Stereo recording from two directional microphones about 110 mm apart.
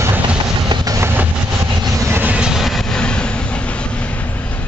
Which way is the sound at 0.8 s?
30° right (ahead or behind).